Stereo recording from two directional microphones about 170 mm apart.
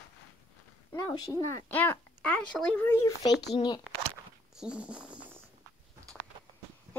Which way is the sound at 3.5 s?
25° left (ahead or behind).